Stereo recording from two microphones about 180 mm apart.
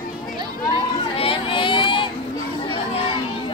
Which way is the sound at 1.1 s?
30° left (ahead or behind).